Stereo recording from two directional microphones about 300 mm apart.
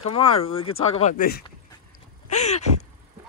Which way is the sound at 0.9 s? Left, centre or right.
Left.